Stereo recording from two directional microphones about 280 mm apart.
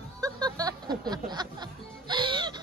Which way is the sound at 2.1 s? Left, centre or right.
Centre.